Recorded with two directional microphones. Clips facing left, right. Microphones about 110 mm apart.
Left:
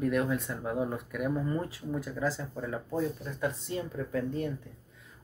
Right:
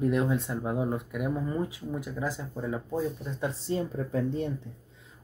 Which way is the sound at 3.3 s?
25° right (ahead or behind).